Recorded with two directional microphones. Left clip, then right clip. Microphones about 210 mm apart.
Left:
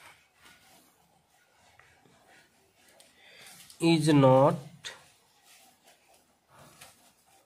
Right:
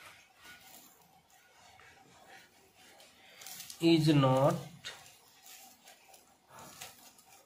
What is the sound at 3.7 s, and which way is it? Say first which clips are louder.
Speech: left 3 dB; 60° left (ahead or behind).